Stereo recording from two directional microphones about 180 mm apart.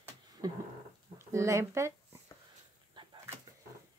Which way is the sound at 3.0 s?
25° right (ahead or behind).